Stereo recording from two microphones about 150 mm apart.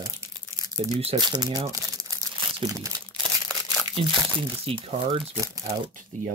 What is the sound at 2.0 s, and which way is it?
Crumpling, 25° right (ahead or behind).